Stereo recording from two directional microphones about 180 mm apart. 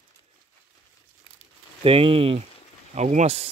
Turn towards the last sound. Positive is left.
turn(degrees=-35)  # may be behind; listen again after turning